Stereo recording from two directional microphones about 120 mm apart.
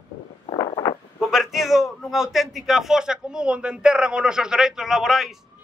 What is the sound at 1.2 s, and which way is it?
A man's voice, centre (ahead or behind).